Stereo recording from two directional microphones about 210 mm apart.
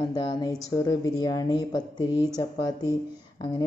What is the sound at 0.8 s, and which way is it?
A woman's voice, 15° left (ahead or behind).